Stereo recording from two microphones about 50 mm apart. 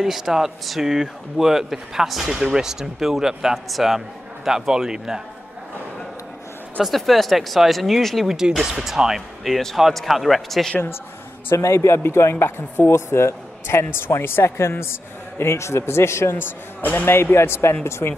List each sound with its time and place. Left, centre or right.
0.0 s speech: centre
6.8 s speech: centre
8.3 s speech: centre
9.5 s speech: centre
11.5 s speech: left
16.3 s speech: left